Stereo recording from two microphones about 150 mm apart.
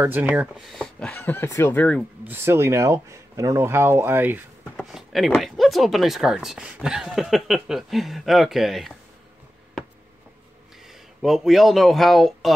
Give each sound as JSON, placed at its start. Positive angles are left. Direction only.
{"t": 0.0, "sound": "speech", "side_deg": -10}
{"t": 2.2, "sound": "speech", "side_deg": -15}
{"t": 4.7, "sound": "speech", "side_deg": 0}
{"t": 11.1, "sound": "speech", "side_deg": 0}